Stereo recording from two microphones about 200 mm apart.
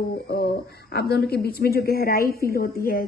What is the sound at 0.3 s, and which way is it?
A woman's voice, 55° left (ahead or behind).